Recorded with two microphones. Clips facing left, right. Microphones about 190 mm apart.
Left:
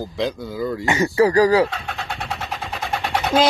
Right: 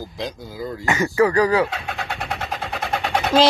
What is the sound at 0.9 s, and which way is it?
Speech, 25° left (ahead or behind).